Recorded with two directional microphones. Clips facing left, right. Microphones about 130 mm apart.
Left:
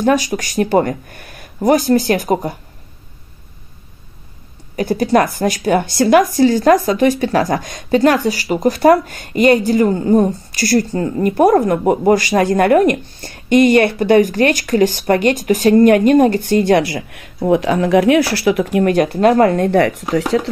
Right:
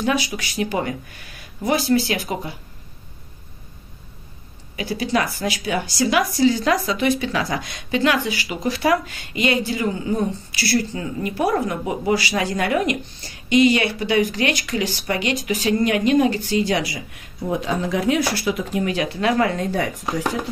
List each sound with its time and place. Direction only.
0.0 s speech: 45° left (ahead or behind)
4.7 s speech: 50° left (ahead or behind); by 20.2 s 75° left (ahead or behind)